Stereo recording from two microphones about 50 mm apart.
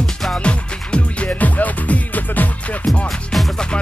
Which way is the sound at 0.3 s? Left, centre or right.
Left.